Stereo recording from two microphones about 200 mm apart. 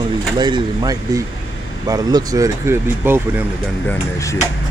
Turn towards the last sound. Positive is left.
turn(degrees=15)  # may be behind; listen again after turning